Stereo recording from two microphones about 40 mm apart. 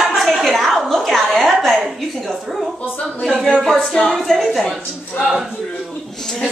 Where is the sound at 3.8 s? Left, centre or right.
Centre.